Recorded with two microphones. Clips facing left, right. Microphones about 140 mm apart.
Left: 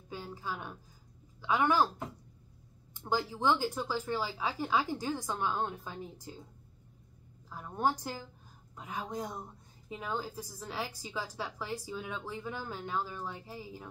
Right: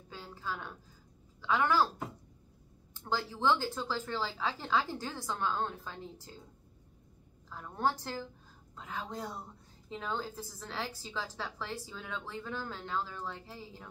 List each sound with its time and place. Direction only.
0.1 s a sound: 15° left (ahead or behind)
1.4 s a woman's voice: 15° left (ahead or behind)
2.9 s a woman's voice: 15° left (ahead or behind)
7.4 s a woman's voice: 15° left (ahead or behind)